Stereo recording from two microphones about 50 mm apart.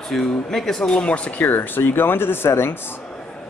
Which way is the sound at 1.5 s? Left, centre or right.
Left.